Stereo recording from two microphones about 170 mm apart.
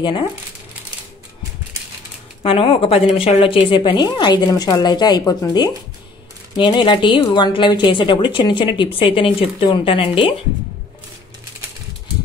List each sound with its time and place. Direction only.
0.0 s a woman's voice: 30° left (ahead or behind)
2.4 s a woman's voice: 35° left (ahead or behind)